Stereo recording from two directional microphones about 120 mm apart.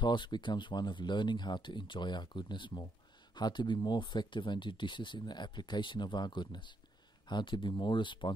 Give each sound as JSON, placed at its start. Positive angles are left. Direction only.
{"t": 0.0, "sound": "speech", "side_deg": 40}